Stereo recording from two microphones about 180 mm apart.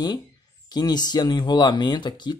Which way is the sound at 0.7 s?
20° left (ahead or behind).